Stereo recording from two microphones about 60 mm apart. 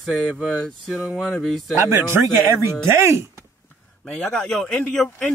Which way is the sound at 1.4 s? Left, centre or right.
Centre.